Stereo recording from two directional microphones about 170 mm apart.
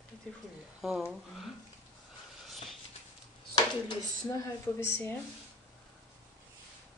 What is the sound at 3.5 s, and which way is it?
A woman's voice, 25° left (ahead or behind).